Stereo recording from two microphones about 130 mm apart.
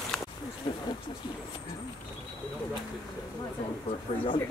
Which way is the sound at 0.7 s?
30° left (ahead or behind).